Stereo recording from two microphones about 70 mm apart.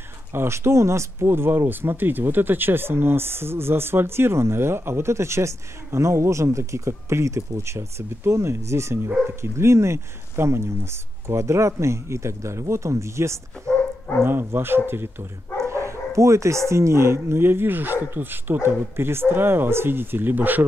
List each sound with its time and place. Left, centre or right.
0.3 s speech: right
13.7 s bow-wow: centre
14.2 s speech: right
15.6 s speech: right